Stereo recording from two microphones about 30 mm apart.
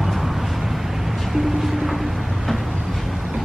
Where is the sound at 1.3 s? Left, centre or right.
Centre.